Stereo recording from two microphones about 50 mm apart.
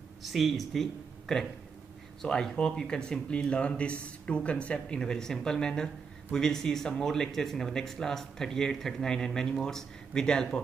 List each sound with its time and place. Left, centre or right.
0.2 s speech: centre